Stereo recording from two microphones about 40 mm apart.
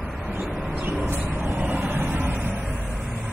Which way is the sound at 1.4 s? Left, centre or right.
Right.